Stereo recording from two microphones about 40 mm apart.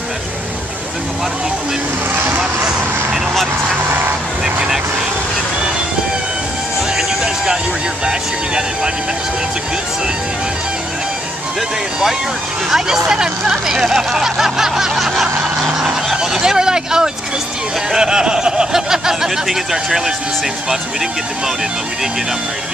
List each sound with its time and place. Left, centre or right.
8.0 s speech: centre
12.7 s speech: centre